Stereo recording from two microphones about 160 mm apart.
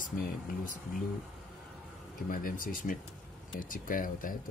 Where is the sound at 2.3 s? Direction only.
60° left (ahead or behind).